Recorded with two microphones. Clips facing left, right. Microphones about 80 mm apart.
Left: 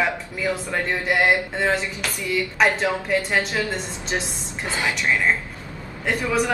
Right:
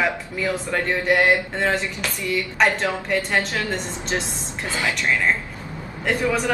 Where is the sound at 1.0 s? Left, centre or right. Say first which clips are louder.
Right 2 dB; centre.